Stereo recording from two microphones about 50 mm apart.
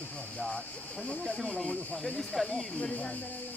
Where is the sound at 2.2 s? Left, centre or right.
Centre.